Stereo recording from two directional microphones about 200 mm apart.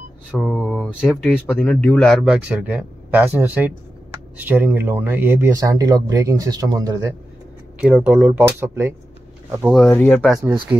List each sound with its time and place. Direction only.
0.4 s speech: 5° left (ahead or behind); by 7.2 s 15° right (ahead or behind)
7.8 s speech: 5° right (ahead or behind)
9.8 s speech: 10° left (ahead or behind)
10.7 s speech: 10° right (ahead or behind)